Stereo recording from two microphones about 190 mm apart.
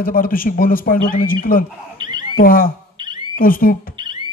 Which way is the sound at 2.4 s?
50° left (ahead or behind).